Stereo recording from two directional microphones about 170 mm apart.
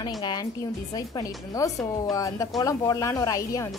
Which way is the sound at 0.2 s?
25° left (ahead or behind).